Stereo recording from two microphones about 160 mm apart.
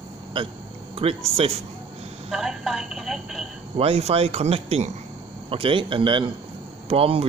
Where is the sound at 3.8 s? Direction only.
40° right (ahead or behind).